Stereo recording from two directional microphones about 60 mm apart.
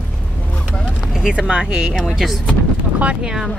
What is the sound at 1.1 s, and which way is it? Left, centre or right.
Speech, centre.